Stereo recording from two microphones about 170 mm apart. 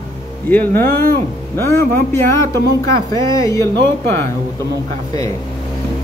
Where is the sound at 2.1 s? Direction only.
15° left (ahead or behind).